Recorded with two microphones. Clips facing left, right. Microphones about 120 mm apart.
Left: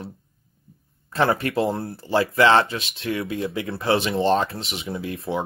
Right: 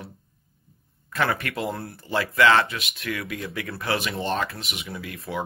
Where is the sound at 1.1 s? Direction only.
30° left (ahead or behind).